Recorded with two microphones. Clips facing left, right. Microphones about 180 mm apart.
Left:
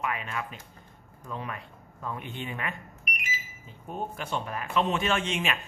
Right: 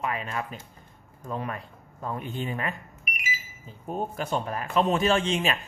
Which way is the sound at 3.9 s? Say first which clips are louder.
Right 4 dB; 40° right (ahead or behind).